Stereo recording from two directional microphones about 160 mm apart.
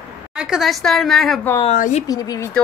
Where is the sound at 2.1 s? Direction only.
25° left (ahead or behind).